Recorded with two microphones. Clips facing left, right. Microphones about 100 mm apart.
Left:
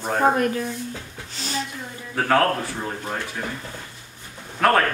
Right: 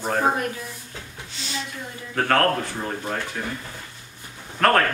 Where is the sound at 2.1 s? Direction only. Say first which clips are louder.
Left 1 dB; 5° left (ahead or behind).